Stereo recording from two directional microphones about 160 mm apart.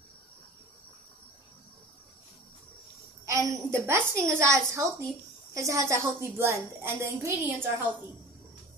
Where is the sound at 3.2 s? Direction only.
20° right (ahead or behind).